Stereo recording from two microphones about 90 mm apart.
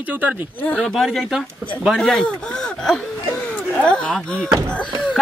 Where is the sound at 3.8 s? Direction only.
10° left (ahead or behind).